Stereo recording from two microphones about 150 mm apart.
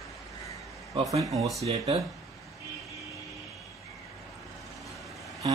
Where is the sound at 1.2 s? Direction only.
25° right (ahead or behind).